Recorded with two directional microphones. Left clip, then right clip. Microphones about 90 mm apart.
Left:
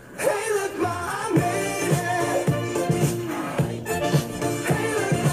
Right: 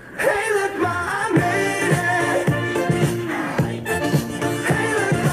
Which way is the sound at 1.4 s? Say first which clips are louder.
Right 5 dB; 40° right (ahead or behind).